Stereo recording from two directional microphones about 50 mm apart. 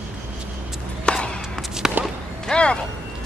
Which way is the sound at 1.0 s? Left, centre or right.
Centre.